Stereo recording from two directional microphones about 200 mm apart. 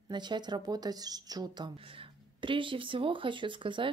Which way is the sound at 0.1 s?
20° right (ahead or behind).